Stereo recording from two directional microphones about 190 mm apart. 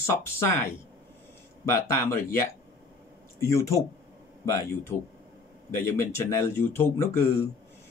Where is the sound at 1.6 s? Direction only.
15° left (ahead or behind).